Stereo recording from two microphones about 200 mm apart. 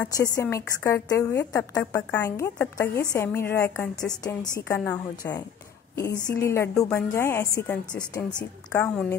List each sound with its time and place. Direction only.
0.4 s a woman's voice: 15° left (ahead or behind)